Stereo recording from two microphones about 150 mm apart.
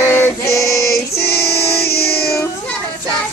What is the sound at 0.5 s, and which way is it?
Female singing, 20° left (ahead or behind).